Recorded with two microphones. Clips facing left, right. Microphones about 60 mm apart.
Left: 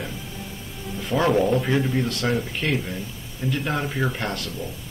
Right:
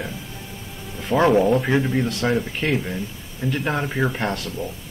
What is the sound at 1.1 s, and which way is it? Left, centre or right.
Speech, centre.